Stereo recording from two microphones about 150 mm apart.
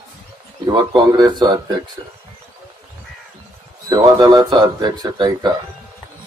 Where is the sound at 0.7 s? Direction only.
25° right (ahead or behind).